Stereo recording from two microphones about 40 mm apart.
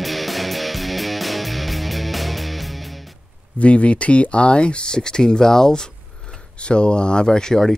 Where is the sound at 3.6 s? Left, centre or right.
Left; by 6.4 s centre.